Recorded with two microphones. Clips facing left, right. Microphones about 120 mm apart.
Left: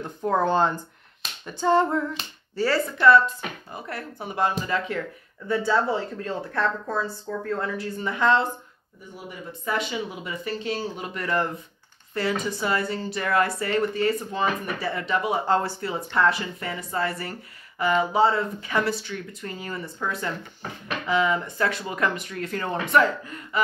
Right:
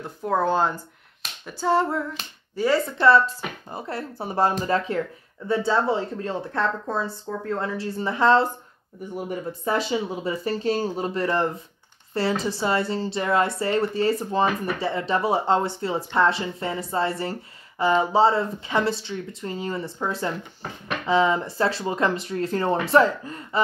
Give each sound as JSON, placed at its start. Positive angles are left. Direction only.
{"t": 0.0, "sound": "speech", "side_deg": -5}
{"t": 1.2, "sound": "a sound", "side_deg": -5}
{"t": 2.5, "sound": "speech", "side_deg": -15}
{"t": 3.7, "sound": "speech", "side_deg": -30}
{"t": 9.7, "sound": "speech", "side_deg": -30}